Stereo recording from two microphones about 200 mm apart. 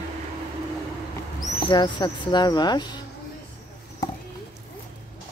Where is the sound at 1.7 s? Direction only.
20° left (ahead or behind).